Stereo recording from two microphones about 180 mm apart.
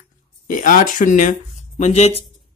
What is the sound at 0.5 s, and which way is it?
Speech, 45° left (ahead or behind).